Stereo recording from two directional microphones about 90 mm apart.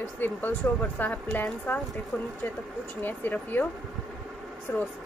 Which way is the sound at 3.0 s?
20° left (ahead or behind).